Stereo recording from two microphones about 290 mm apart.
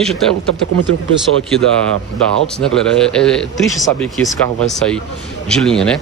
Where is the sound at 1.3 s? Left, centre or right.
Right.